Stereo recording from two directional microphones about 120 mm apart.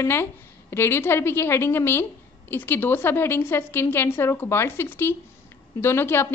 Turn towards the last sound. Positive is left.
turn(degrees=20)  # may be behind; listen again after turning